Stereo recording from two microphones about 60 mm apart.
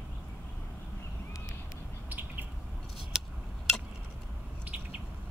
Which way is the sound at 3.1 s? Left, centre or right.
Centre.